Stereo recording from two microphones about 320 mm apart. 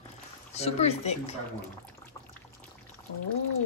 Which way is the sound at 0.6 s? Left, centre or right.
Centre.